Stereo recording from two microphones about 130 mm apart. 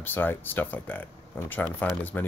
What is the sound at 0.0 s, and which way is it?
Speech, 15° left (ahead or behind).